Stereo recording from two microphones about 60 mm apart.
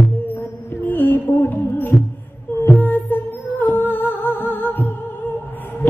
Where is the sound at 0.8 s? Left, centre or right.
Left.